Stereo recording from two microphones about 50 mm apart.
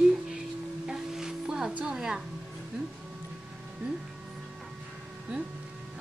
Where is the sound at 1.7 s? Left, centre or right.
Right.